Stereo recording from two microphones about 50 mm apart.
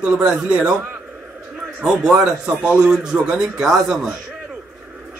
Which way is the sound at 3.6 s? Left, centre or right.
Centre.